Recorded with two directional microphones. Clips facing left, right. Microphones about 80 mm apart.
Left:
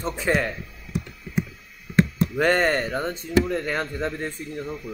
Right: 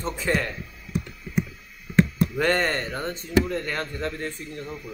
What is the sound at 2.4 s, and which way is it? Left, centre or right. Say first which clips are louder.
Speech: left 4 dB; centre.